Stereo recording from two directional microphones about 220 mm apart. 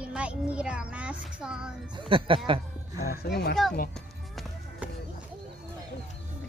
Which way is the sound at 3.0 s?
45° left (ahead or behind).